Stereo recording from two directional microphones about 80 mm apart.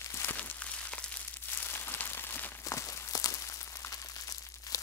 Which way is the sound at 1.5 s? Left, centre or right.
Left.